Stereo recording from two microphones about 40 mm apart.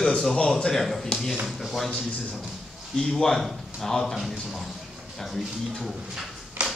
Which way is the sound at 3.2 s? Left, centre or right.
Centre.